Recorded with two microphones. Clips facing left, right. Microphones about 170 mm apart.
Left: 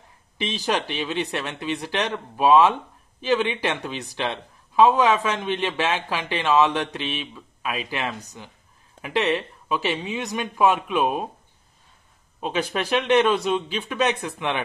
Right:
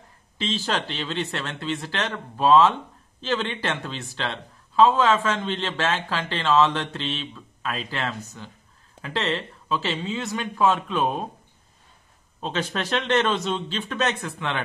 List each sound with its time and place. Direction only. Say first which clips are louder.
0.4 s speech: left 2 dB; 15° left (ahead or behind)
12.4 s speech: left 2 dB; 10° left (ahead or behind)